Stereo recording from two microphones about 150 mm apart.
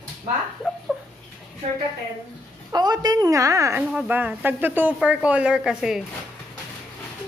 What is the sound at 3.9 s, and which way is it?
A woman's voice, 10° right (ahead or behind).